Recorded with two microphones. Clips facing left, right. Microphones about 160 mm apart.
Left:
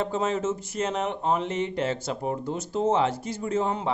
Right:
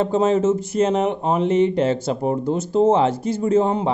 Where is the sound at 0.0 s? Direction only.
30° right (ahead or behind).